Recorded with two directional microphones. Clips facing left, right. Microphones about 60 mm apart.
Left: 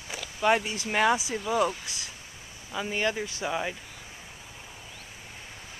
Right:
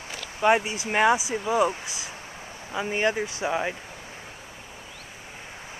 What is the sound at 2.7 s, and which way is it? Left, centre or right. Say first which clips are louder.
Speech: right 4 dB; right.